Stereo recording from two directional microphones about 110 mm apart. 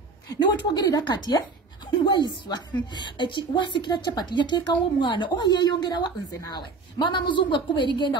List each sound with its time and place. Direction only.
0.3 s a woman's voice: 40° left (ahead or behind)